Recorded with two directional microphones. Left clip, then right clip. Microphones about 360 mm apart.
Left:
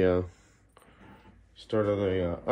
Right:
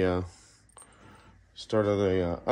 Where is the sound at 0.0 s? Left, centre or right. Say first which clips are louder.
Left 3 dB; centre.